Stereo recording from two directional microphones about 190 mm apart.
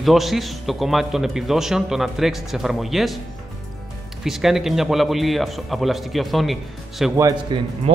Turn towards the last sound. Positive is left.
turn(degrees=-20)  # may be behind; listen again after turning